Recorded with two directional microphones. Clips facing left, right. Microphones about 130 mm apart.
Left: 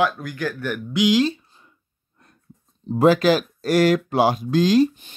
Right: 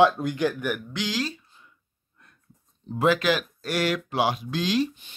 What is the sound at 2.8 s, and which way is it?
Speech, 35° left (ahead or behind).